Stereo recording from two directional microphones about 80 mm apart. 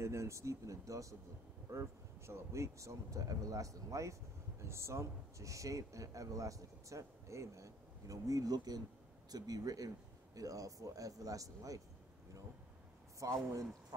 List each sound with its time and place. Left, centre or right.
0.0 s speech: right
13.2 s speech: right